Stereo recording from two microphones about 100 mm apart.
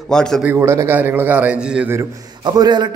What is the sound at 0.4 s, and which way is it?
Speech, 20° right (ahead or behind).